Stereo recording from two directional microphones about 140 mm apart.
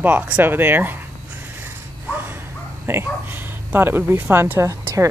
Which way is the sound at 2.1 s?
15° right (ahead or behind).